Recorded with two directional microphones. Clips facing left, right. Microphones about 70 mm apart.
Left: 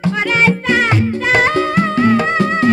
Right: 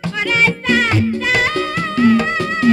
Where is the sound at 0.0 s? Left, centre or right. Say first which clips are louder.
Left 2 dB; left.